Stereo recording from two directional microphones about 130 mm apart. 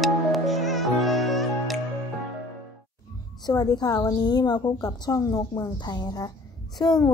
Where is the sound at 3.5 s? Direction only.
30° left (ahead or behind).